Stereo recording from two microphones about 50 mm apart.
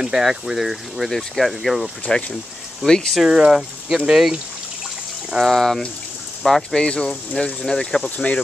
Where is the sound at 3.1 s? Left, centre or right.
Centre.